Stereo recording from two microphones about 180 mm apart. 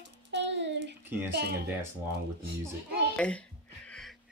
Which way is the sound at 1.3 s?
65° right (ahead or behind).